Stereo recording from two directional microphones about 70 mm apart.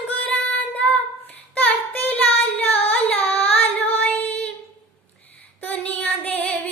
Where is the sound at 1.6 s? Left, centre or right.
Left.